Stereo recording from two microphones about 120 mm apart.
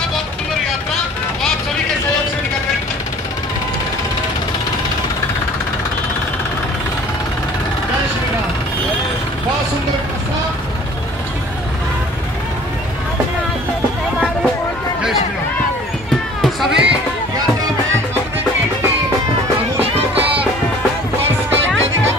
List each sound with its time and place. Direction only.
16.3 s run: centre (ahead or behind)
19.8 s music: 55° right (ahead or behind)